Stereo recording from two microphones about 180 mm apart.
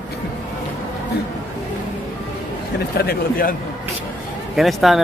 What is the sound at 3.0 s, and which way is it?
Speech, 55° left (ahead or behind).